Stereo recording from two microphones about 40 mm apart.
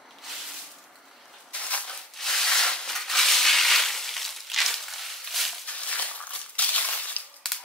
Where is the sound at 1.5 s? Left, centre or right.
Left.